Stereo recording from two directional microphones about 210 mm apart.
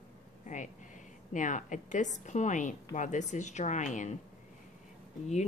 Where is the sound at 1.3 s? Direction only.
35° left (ahead or behind).